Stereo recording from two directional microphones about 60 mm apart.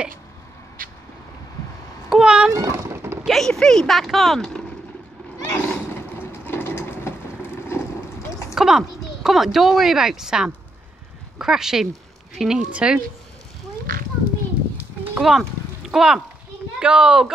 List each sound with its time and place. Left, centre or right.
2.0 s cat: centre
2.5 s a sound: right
2.9 s a sound: right
3.3 s speech: centre
5.5 s vehicle: left
8.5 s speech: centre
15.1 s speech: centre